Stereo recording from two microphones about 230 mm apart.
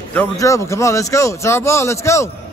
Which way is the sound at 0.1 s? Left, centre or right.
Centre.